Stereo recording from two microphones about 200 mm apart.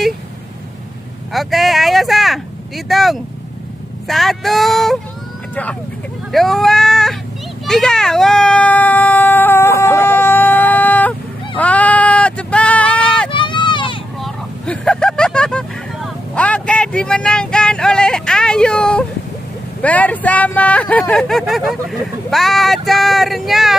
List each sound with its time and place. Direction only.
1.3 s speech: centre (ahead or behind)
6.3 s speech: centre (ahead or behind)
7.6 s a sound: centre (ahead or behind)
13.3 s a sound: 25° left (ahead or behind)
14.2 s vehicle: 5° left (ahead or behind)
19.8 s speech: 5° left (ahead or behind)